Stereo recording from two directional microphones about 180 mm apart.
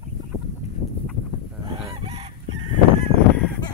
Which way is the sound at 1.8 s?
35° right (ahead or behind).